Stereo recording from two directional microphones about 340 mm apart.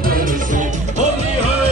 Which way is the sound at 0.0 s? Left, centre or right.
Right.